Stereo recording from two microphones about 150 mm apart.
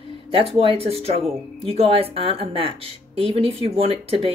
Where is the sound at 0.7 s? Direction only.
40° right (ahead or behind).